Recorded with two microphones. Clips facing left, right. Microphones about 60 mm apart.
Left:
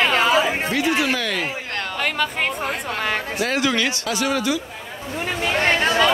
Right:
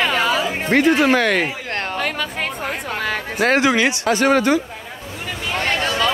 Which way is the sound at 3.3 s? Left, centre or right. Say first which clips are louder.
Right 10 dB; right.